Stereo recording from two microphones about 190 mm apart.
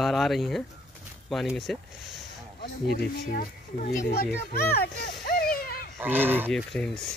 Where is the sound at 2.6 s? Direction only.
55° left (ahead or behind).